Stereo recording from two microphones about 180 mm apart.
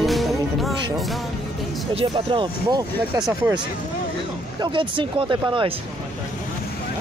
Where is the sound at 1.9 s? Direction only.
30° right (ahead or behind).